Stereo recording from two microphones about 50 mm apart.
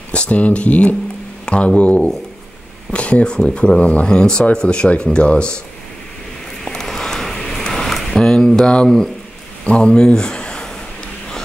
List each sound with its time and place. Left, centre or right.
0.1 s speech: left
1.4 s a sound: left
2.9 s speech: left
6.6 s a sound: centre
8.8 s speech: centre
9.7 s speech: centre